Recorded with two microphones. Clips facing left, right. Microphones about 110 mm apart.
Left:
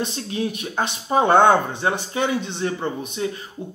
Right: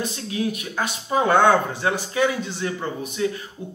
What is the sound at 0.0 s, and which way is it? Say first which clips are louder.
Speech: even; 25° left (ahead or behind).